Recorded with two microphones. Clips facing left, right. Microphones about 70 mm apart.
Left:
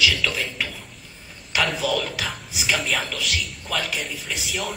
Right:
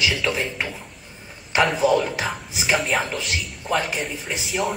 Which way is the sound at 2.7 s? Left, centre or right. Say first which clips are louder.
Right 3 dB; centre.